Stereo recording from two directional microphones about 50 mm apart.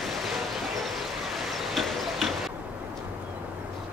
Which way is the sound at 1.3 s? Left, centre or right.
Centre.